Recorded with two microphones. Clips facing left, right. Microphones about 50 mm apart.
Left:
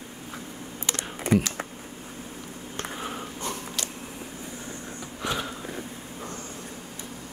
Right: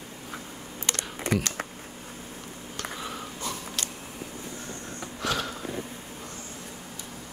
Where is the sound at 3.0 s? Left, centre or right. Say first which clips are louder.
Left 2 dB; left.